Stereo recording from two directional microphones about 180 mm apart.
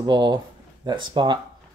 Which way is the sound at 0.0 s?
25° right (ahead or behind).